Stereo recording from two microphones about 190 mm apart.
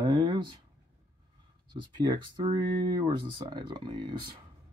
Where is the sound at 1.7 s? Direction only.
25° right (ahead or behind).